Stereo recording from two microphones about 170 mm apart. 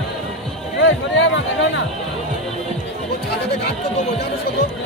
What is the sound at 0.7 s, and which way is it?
Music, 90° left.